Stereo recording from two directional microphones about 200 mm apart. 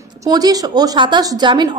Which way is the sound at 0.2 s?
20° right (ahead or behind).